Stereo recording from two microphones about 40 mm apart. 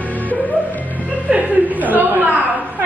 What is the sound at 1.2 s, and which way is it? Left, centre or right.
Chuckle, right.